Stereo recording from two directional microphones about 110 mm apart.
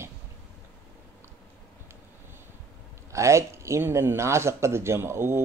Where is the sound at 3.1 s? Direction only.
25° right (ahead or behind).